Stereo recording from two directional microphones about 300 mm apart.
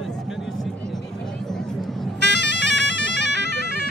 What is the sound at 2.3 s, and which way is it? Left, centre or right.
Bagpipes, left.